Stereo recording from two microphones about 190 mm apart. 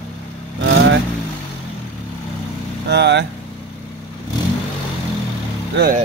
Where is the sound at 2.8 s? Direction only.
65° right (ahead or behind).